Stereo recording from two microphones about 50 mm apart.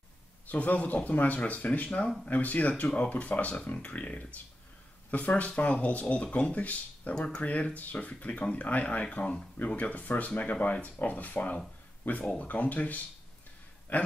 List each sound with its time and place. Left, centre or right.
0.5 s speech: left